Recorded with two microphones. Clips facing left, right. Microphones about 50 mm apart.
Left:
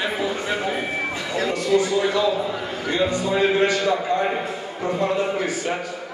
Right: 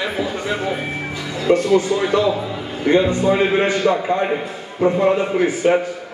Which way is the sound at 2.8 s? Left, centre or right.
Right.